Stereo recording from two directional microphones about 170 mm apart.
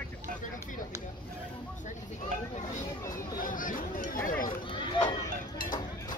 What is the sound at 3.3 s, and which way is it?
Speech, 55° left (ahead or behind).